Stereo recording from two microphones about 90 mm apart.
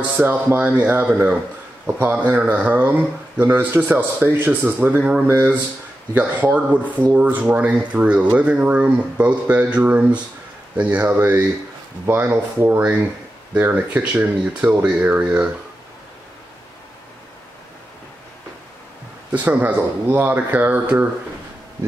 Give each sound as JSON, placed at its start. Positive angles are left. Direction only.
{"t": 0.2, "sound": "speech", "side_deg": -20}
{"t": 6.1, "sound": "speech", "side_deg": -15}
{"t": 19.3, "sound": "speech", "side_deg": -20}